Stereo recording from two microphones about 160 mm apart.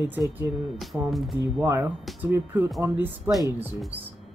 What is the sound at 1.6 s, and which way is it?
Speech, 15° right (ahead or behind).